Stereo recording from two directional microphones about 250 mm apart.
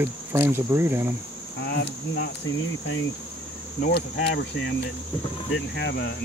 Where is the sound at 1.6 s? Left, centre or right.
Left.